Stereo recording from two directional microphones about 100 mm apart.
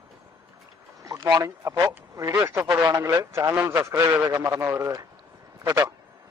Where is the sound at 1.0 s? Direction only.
40° right (ahead or behind).